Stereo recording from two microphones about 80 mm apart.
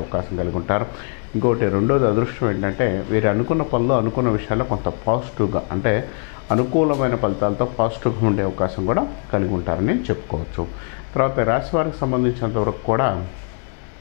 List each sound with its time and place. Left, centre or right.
0.1 s speech: left